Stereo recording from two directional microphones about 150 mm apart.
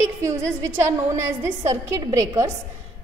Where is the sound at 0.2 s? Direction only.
20° right (ahead or behind).